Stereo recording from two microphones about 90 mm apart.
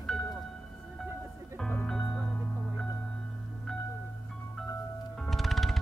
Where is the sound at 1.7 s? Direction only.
10° left (ahead or behind).